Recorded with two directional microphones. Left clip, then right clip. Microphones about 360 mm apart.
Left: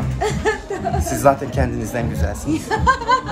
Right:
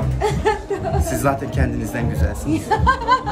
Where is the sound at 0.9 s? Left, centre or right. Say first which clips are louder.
Left 6 dB; centre.